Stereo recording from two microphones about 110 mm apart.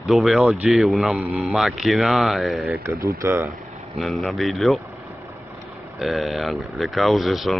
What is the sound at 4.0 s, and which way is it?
Speech, centre (ahead or behind).